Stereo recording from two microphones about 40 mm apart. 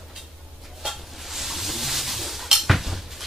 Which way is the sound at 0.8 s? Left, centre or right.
Centre.